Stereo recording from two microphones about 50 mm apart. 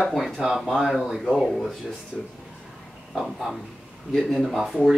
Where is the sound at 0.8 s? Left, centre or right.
Centre.